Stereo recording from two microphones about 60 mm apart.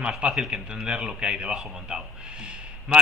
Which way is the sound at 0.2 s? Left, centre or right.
Centre.